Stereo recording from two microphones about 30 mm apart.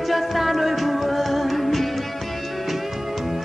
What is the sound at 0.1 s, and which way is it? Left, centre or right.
Music, centre.